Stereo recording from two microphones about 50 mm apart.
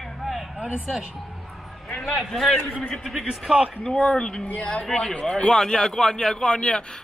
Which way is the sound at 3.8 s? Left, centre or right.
Centre.